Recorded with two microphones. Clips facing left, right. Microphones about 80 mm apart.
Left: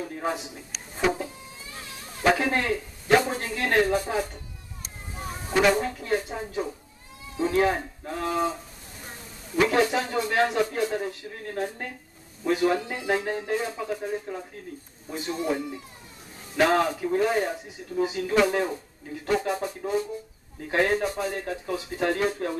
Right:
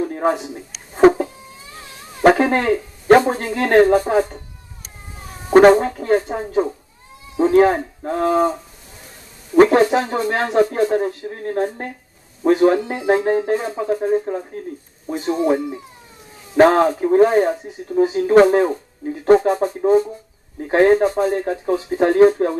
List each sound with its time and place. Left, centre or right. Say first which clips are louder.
0.0 s a sound: right 10 dB; right
2.2 s speech: right 9 dB; right
5.5 s speech: right 12 dB; right
9.6 s speech: right 10 dB; right